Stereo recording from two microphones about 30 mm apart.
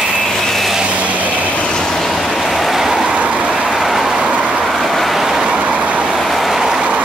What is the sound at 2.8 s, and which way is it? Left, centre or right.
Vehicle, centre.